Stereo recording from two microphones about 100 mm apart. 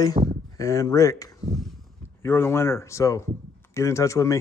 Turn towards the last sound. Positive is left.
turn(degrees=30)  # may be behind; listen again after turning